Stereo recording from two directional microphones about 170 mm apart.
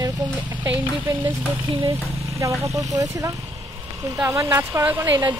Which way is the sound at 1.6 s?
30° right (ahead or behind).